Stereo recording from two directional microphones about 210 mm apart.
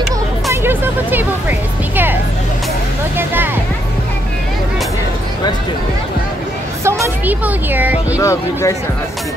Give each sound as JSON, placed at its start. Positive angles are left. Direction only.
{"t": 0.5, "sound": "music", "side_deg": -10}
{"t": 6.8, "sound": "speech", "side_deg": -10}
{"t": 8.2, "sound": "speech", "side_deg": 15}